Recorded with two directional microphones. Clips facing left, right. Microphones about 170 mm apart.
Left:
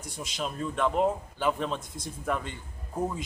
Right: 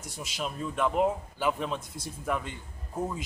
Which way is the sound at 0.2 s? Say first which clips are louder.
Left 1 dB; 5° right (ahead or behind).